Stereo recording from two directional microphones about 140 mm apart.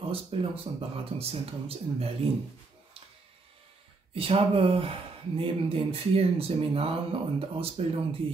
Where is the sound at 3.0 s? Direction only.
40° right (ahead or behind).